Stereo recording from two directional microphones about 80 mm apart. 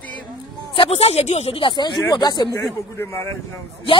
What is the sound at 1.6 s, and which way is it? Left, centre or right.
Speech, left.